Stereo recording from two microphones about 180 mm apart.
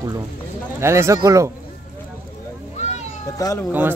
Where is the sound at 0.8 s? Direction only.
15° right (ahead or behind).